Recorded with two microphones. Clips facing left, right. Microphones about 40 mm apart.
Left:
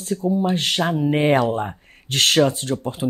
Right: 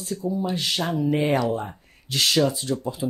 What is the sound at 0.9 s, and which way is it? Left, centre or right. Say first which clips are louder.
Speech: left 4 dB; left.